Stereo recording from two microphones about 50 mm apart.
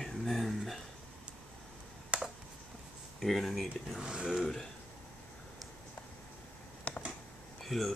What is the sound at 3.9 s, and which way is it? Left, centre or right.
Speech, centre.